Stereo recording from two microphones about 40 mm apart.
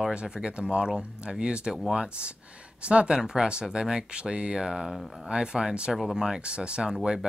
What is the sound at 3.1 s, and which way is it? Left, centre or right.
Speech, centre.